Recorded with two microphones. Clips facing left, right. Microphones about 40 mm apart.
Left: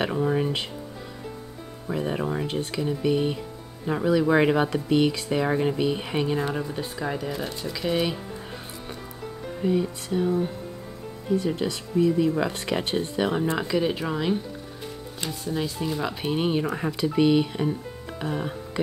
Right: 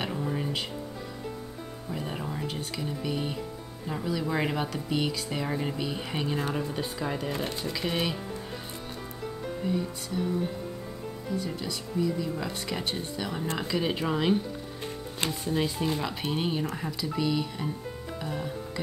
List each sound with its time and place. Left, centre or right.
0.0 s speech: left
2.0 s speech: left
2.8 s speech: centre
6.3 s speech: centre
7.3 s speech: right
7.9 s speech: centre
9.7 s speech: left
11.2 s speech: left
13.4 s speech: centre
15.5 s speech: centre
16.0 s speech: centre
16.7 s speech: left